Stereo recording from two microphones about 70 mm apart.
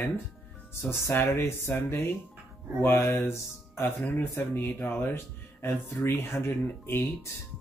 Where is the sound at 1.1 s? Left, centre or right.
Left.